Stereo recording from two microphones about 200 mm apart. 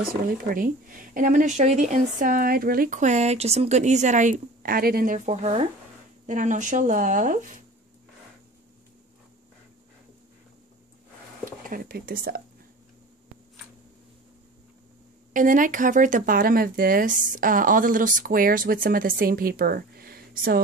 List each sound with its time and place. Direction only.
0.5 s speech: 45° right (ahead or behind)
11.6 s speech: 45° right (ahead or behind)
15.3 s speech: 40° right (ahead or behind)